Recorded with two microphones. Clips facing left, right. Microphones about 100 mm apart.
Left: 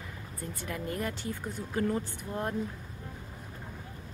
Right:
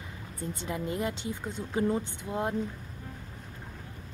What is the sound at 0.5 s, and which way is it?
Speech, 20° right (ahead or behind).